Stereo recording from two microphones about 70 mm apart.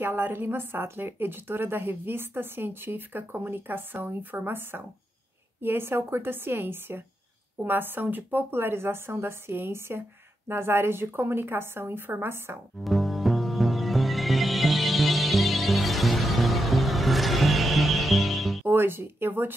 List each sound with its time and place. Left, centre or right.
0.0 s a woman's voice: right
12.8 s music: centre
18.6 s speech: right